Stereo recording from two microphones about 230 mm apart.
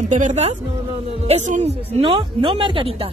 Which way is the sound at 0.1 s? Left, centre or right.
Right.